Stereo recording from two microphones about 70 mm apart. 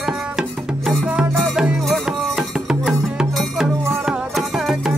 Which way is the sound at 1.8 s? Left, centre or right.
Centre.